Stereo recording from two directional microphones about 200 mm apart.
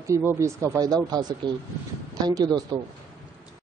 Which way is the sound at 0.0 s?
15° right (ahead or behind).